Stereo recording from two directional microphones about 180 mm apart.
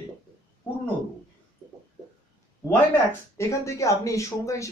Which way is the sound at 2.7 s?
15° left (ahead or behind).